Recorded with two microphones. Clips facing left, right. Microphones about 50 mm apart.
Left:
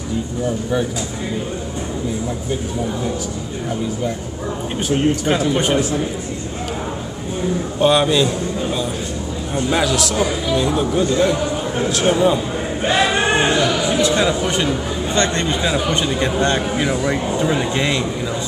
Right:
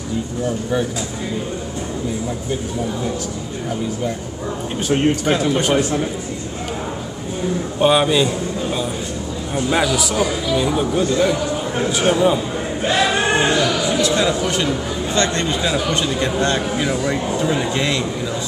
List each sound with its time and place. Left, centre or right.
4.9 s speech: right
7.8 s a man's voice: centre
12.8 s singing: left
13.4 s music: left
15.1 s speech: left